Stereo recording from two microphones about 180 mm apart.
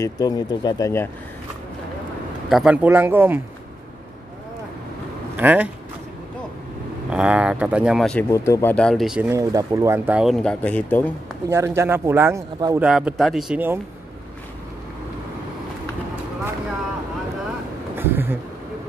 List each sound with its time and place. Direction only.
0.0 s speech: 20° left (ahead or behind)
2.5 s speech: 5° right (ahead or behind)
5.3 s speech: 10° right (ahead or behind)
7.1 s speech: 5° right (ahead or behind)
8.3 s speech: 15° left (ahead or behind); by 9.3 s 5° right (ahead or behind)
9.3 s speech: 20° right (ahead or behind); by 11.1 s 10° left (ahead or behind)
11.4 s speech: 15° right (ahead or behind)
12.8 s speech: 5° right (ahead or behind)
17.9 s a sound: 10° right (ahead or behind)